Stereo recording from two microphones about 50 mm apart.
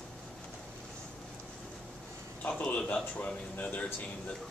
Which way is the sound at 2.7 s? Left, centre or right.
Left.